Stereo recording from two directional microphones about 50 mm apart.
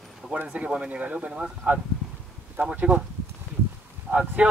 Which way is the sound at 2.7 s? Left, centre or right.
Right.